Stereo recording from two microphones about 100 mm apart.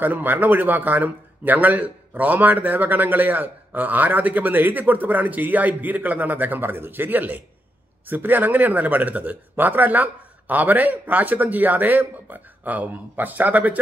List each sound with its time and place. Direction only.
0.0 s a man's voice: 20° right (ahead or behind)